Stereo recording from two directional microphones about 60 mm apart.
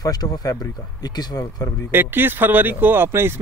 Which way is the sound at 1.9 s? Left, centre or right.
Right.